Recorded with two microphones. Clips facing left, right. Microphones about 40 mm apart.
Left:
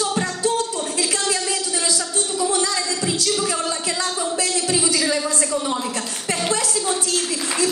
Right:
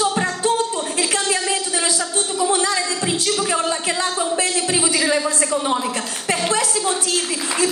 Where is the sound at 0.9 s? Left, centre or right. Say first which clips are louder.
Right 2 dB; right.